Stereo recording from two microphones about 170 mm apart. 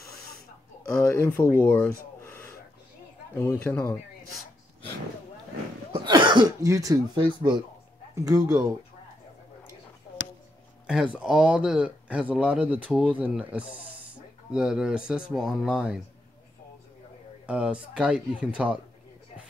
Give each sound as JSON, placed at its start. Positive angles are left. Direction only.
{"t": 0.9, "sound": "speech", "side_deg": 15}
{"t": 3.3, "sound": "speech", "side_deg": 15}
{"t": 6.0, "sound": "speech", "side_deg": -25}
{"t": 10.9, "sound": "speech", "side_deg": -5}
{"t": 17.5, "sound": "speech", "side_deg": -5}